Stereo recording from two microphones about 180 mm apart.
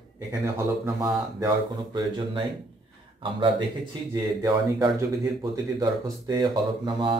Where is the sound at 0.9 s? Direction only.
20° right (ahead or behind).